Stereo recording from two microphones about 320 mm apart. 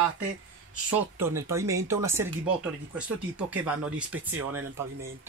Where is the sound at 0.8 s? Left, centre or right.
Centre.